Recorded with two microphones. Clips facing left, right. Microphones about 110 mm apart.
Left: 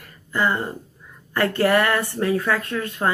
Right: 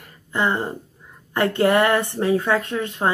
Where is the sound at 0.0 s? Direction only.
20° right (ahead or behind).